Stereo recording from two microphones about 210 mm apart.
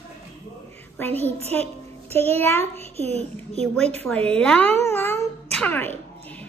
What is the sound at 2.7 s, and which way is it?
Speech, 30° right (ahead or behind).